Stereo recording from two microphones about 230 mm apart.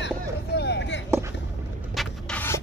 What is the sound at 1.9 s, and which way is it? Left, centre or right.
Scrape, centre.